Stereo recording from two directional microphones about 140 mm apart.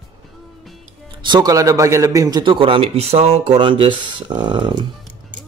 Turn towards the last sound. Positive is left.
turn(degrees=-35)  # may be behind; listen again after turning